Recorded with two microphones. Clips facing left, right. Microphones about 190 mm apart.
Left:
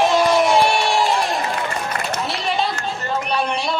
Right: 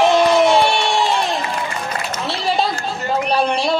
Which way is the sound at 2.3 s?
30° right (ahead or behind).